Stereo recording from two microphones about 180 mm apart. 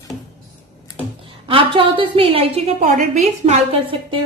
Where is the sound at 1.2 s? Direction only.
30° right (ahead or behind).